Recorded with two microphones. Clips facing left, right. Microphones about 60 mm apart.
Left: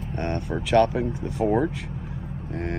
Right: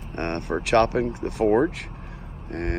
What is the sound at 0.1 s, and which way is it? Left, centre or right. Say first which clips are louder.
Speech: right 2 dB; right.